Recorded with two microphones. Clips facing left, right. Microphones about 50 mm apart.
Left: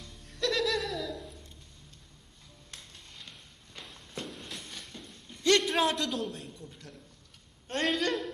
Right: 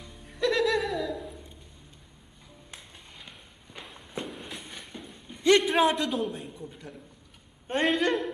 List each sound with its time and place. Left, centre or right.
0.0 s music: centre
2.7 s walk: centre
7.6 s a sound: centre